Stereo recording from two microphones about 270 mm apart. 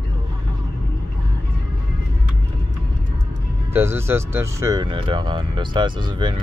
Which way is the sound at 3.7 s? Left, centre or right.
Centre.